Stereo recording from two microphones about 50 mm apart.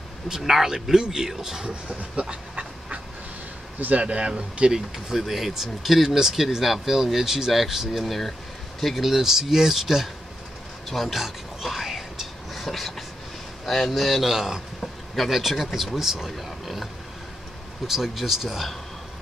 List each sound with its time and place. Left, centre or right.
0.3 s speech: centre
1.9 s speech: right
2.2 s dog: right
4.0 s speech: right
10.9 s whispering: centre
13.7 s speech: centre